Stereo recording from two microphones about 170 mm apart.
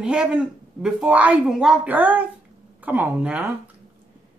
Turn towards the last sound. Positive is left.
turn(degrees=-5)  # may be behind; listen again after turning